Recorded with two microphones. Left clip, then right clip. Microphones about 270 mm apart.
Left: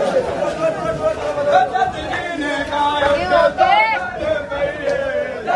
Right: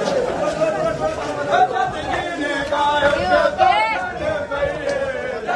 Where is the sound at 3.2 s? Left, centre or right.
Left.